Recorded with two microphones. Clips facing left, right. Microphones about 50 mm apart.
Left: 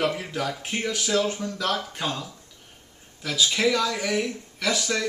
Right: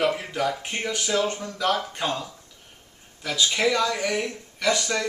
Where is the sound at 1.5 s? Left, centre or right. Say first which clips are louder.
Right 3 dB; centre.